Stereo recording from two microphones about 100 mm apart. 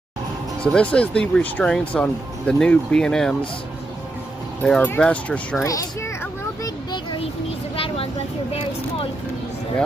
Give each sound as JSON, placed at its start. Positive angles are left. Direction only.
{"t": 0.6, "sound": "speech", "side_deg": 10}
{"t": 4.6, "sound": "speech", "side_deg": 5}
{"t": 5.6, "sound": "a child's voice", "side_deg": 30}
{"t": 7.7, "sound": "vehicle", "side_deg": 70}